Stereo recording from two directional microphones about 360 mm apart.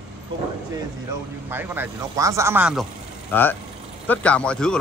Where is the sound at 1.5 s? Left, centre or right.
Centre.